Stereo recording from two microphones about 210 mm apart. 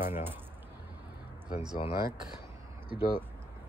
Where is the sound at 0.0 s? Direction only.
10° right (ahead or behind).